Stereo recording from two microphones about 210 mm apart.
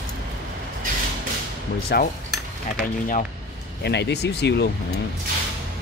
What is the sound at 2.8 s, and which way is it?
Speech, 40° left (ahead or behind).